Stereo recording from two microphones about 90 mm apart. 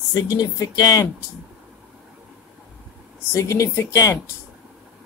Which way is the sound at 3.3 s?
35° left (ahead or behind).